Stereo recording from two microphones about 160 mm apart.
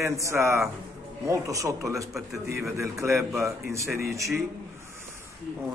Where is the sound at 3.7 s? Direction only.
15° right (ahead or behind).